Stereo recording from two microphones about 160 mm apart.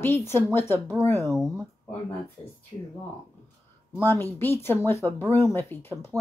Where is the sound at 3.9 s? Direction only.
15° left (ahead or behind).